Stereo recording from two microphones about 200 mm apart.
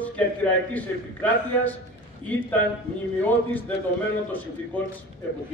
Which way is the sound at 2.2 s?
25° right (ahead or behind).